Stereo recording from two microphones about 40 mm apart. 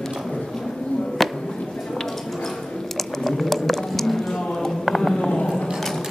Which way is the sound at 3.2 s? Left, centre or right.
Centre.